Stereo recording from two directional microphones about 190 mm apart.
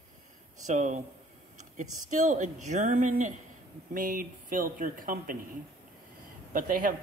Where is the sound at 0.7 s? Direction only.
40° right (ahead or behind).